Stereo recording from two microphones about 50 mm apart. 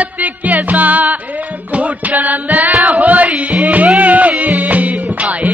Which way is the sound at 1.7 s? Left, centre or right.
Right.